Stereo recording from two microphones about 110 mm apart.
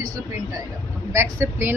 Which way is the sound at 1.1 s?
25° right (ahead or behind).